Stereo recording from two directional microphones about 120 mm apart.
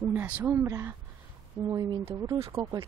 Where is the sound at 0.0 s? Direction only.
15° right (ahead or behind).